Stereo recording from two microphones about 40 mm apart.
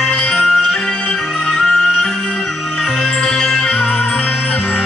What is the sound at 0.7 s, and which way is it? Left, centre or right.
Music, left.